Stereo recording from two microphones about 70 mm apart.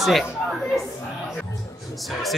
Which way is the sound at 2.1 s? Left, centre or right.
Centre.